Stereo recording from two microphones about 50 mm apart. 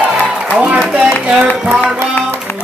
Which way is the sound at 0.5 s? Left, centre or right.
Right.